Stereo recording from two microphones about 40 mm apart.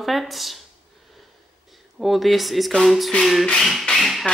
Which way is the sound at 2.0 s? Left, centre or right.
Centre.